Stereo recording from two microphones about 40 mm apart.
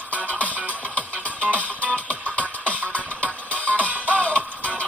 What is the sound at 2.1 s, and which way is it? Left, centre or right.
Music, left.